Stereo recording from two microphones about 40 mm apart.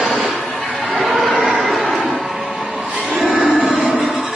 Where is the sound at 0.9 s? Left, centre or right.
Centre.